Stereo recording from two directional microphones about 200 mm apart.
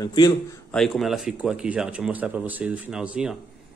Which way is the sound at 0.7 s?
Centre (ahead or behind).